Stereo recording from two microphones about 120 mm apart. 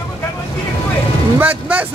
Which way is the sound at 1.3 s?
10° right (ahead or behind).